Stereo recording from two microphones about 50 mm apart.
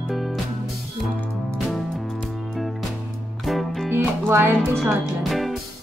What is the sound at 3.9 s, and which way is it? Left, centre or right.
Music, right.